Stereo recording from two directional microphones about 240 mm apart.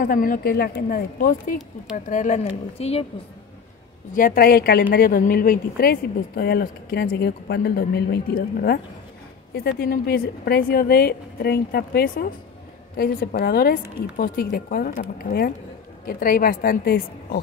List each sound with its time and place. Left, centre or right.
0.0 s a woman's voice: left
4.1 s speech: left